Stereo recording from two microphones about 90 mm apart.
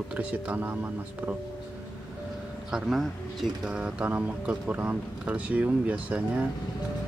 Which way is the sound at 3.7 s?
10° right (ahead or behind).